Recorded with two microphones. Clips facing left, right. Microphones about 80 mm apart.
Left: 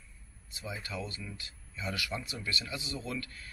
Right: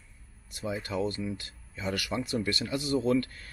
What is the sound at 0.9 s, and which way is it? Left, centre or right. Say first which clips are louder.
Speech: right 10 dB; right.